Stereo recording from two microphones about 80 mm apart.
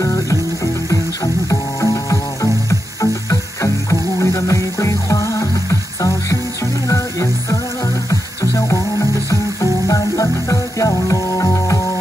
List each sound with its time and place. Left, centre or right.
0.0 s music: left